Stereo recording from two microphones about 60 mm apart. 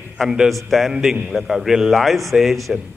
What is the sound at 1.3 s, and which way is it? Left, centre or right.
A man's voice, centre.